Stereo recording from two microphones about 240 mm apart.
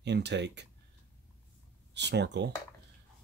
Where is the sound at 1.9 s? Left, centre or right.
Right.